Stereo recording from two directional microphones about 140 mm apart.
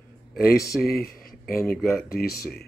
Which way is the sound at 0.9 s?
90° left.